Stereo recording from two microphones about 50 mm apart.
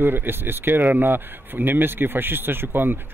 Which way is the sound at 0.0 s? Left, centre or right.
Right.